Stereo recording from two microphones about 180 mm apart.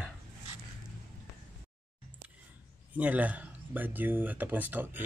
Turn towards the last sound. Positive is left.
turn(degrees=-10)  # may be behind; listen again after turning